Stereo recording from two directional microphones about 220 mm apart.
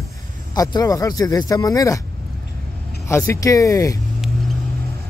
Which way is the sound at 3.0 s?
10° left (ahead or behind).